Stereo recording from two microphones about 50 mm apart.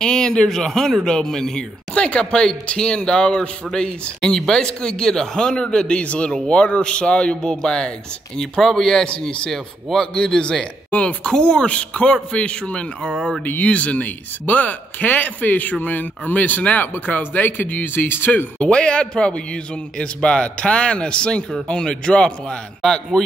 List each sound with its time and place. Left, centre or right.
0.0 s a man's voice: centre
10.1 s speech: centre
10.9 s a man's voice: left
13.4 s speech: left
18.6 s a man's voice: left